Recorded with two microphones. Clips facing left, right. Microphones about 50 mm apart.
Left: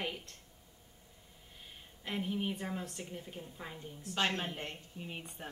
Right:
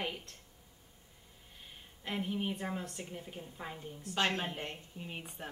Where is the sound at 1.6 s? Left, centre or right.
Centre.